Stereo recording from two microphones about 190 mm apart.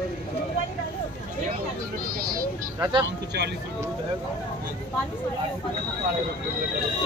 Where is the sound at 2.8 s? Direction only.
20° right (ahead or behind).